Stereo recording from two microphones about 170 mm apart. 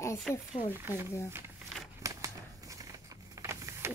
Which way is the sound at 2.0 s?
20° right (ahead or behind).